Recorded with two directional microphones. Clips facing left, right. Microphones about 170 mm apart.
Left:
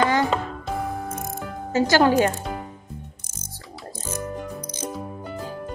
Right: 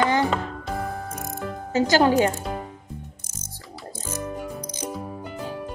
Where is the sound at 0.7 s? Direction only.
Centre (ahead or behind).